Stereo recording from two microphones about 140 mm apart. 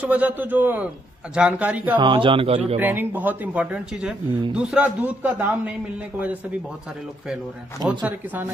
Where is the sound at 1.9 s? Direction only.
35° right (ahead or behind).